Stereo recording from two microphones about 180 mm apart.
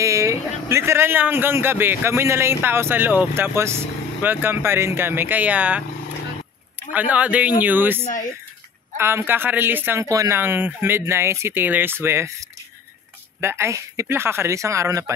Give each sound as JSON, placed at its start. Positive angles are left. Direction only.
{"t": 0.0, "sound": "a man's voice", "side_deg": -15}
{"t": 6.9, "sound": "a man's voice", "side_deg": -10}
{"t": 8.0, "sound": "speech", "side_deg": 45}
{"t": 8.9, "sound": "a man's voice", "side_deg": -15}